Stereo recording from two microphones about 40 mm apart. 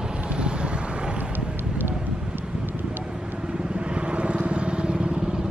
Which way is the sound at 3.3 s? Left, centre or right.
Right.